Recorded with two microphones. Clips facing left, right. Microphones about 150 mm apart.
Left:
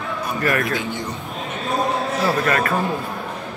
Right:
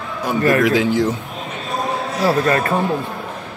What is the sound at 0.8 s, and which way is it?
Speech, 90° right.